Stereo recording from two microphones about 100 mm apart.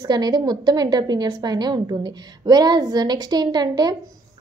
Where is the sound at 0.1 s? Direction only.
45° right (ahead or behind).